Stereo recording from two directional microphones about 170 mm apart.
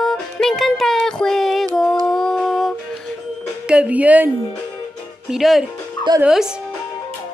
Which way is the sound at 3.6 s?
5° right (ahead or behind).